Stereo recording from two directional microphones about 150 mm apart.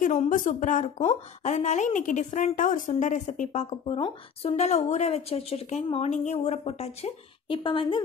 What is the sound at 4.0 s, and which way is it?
Speech, 40° left (ahead or behind).